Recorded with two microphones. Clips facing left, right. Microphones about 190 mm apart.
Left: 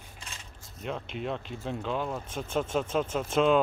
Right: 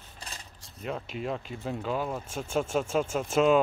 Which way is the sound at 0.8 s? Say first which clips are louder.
Right 1 dB; 5° right (ahead or behind).